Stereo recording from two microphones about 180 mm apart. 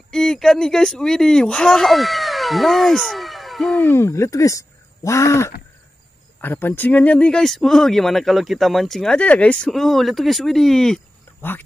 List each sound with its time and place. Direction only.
0.1 s speech: 5° left (ahead or behind)
3.8 s speech: 15° left (ahead or behind)